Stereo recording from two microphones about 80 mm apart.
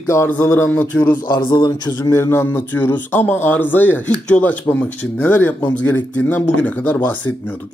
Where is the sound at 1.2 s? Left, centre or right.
Left.